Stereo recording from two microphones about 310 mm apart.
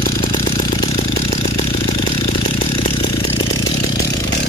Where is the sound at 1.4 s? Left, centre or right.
Left.